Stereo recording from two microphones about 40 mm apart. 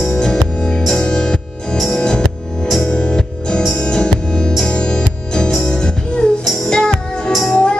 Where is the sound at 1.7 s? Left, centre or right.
Centre.